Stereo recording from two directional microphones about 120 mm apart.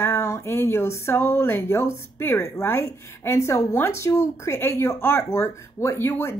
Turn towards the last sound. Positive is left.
turn(degrees=20)  # may be behind; listen again after turning